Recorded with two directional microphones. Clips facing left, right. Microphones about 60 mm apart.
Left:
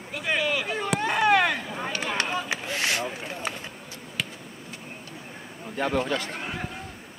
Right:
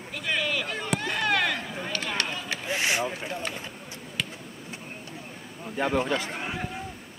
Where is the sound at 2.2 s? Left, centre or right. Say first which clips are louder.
Left 3 dB; centre.